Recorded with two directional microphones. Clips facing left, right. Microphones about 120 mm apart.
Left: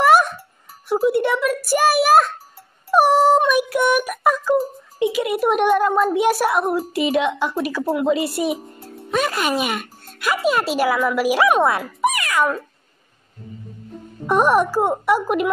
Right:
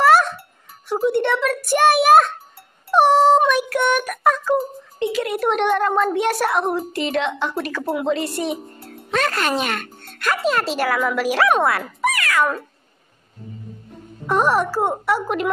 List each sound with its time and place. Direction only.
0.0 s music: 15° left (ahead or behind)
0.8 s a child's voice: 10° left (ahead or behind)
14.2 s speech: 15° left (ahead or behind)